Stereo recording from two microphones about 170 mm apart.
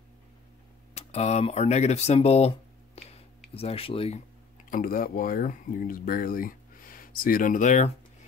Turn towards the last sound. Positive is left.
turn(degrees=45)  # may be behind; listen again after turning